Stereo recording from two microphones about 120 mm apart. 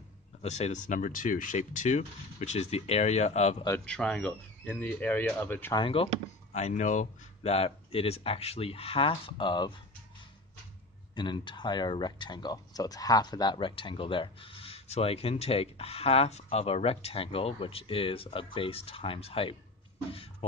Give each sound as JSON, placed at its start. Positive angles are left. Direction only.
{"t": 0.4, "sound": "speech", "side_deg": 70}
{"t": 3.8, "sound": "speech", "side_deg": 10}
{"t": 5.8, "sound": "speech", "side_deg": 50}
{"t": 6.5, "sound": "speech", "side_deg": 80}
{"t": 11.1, "sound": "speech", "side_deg": 40}